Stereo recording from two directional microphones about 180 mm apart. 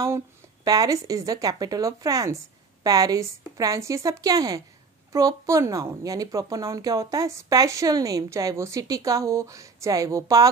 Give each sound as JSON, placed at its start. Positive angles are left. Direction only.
{"t": 0.7, "sound": "a woman's voice", "side_deg": -20}